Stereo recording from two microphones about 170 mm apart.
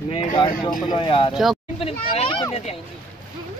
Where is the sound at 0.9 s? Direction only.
30° left (ahead or behind).